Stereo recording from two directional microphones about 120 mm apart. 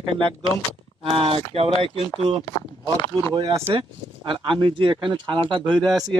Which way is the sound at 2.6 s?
25° left (ahead or behind).